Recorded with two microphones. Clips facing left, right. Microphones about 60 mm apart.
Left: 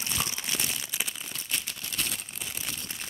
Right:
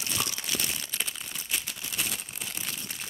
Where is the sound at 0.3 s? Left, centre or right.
Left.